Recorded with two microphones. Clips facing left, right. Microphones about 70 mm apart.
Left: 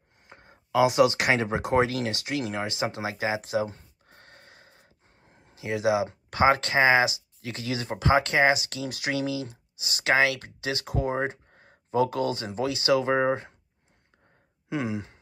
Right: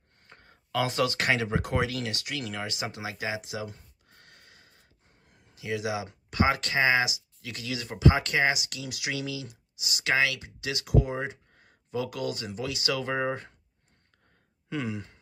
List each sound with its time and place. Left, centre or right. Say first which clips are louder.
0.2 s speech: left 3 dB; centre
14.7 s sigh: left 3 dB; left